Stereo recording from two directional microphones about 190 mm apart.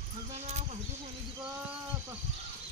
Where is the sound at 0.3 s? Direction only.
35° right (ahead or behind).